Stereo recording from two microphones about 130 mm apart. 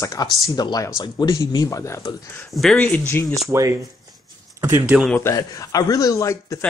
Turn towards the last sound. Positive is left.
turn(degrees=25)  # may be behind; listen again after turning